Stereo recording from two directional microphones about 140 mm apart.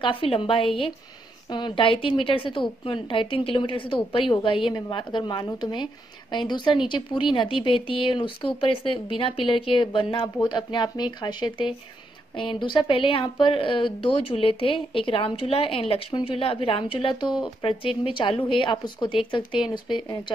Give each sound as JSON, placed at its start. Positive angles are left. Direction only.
{"t": 0.0, "sound": "speech", "side_deg": 40}